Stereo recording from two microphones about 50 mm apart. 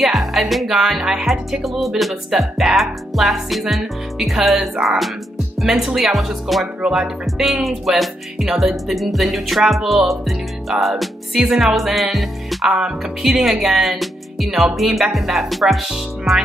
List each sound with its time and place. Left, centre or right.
0.0 s music: centre
6.8 s speech: centre
7.6 s music: centre
12.6 s speech: centre
13.2 s music: centre